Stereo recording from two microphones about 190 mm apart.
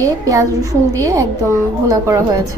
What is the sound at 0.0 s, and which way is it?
A woman's voice, 15° right (ahead or behind).